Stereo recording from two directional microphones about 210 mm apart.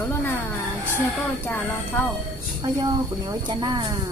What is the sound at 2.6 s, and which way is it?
A woman's voice, 20° right (ahead or behind).